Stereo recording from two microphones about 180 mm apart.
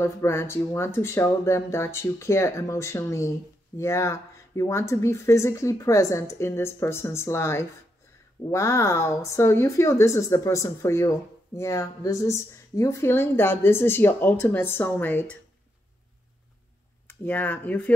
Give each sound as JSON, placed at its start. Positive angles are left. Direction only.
{"t": 0.0, "sound": "speech", "side_deg": 15}
{"t": 17.1, "sound": "speech", "side_deg": 10}